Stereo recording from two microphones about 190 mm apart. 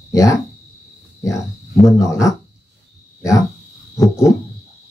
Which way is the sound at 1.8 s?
15° left (ahead or behind).